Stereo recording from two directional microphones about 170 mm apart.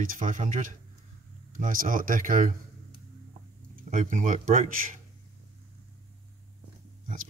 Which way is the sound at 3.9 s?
50° right (ahead or behind).